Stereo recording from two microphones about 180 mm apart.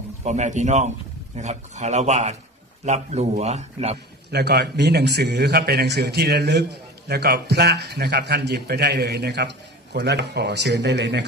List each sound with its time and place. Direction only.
0.2 s a man's voice: 40° right (ahead or behind)
4.3 s a man's voice: 65° right (ahead or behind)